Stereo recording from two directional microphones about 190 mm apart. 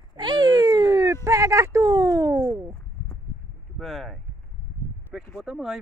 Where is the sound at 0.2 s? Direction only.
20° right (ahead or behind).